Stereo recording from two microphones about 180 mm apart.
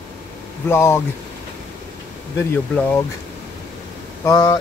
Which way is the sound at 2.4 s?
10° left (ahead or behind).